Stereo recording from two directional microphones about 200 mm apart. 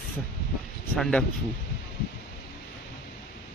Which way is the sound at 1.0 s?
5° left (ahead or behind).